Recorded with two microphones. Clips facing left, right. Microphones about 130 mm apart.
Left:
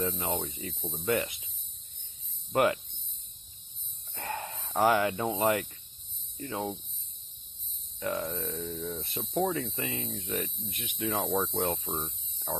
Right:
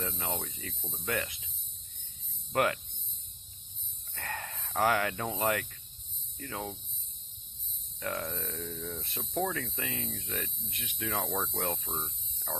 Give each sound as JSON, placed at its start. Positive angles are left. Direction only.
{"t": 0.0, "sound": "speech", "side_deg": 15}
{"t": 0.8, "sound": "speech", "side_deg": 5}
{"t": 2.5, "sound": "speech", "side_deg": 15}
{"t": 4.1, "sound": "speech", "side_deg": 20}
{"t": 6.3, "sound": "cricket", "side_deg": 15}
{"t": 8.0, "sound": "speech", "side_deg": 10}